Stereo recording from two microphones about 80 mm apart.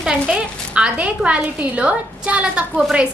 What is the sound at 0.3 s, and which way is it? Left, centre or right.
A woman's voice, centre.